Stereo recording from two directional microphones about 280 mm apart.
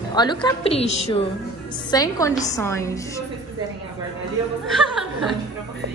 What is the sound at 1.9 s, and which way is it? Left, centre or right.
A woman's voice, centre.